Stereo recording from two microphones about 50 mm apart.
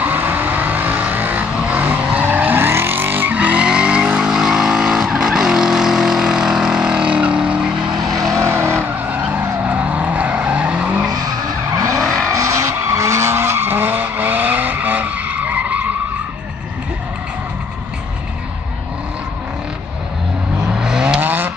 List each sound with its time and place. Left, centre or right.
0.0 s vehicle: right
2.6 s vehicle: right
8.1 s vehicle: centre
8.4 s vehicle: right
9.0 s vehicle: right
12.0 s vehicle: centre
12.3 s vehicle: right
20.7 s vehicle: centre
21.2 s vehicle: right